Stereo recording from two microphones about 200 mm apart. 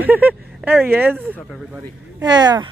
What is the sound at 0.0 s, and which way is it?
Speech, 10° right (ahead or behind).